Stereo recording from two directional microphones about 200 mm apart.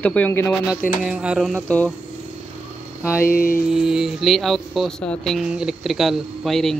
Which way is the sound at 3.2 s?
45° left (ahead or behind).